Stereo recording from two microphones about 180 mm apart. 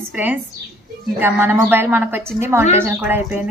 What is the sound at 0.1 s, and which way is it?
A woman's voice, 10° right (ahead or behind).